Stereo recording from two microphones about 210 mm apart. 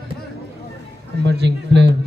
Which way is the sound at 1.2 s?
55° right (ahead or behind).